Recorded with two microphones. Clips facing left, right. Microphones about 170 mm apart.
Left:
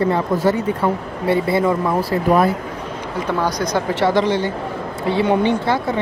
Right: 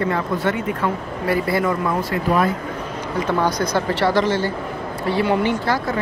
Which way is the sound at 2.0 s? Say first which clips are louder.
Left 4 dB; 35° left (ahead or behind).